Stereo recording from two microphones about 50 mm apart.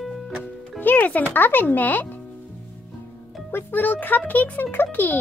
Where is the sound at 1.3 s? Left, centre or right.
Left.